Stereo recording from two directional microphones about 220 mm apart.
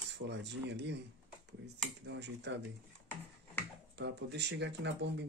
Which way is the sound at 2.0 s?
50° right (ahead or behind).